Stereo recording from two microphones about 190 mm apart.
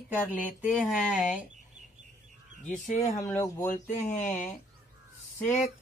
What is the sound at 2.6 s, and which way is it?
Speech, 40° left (ahead or behind).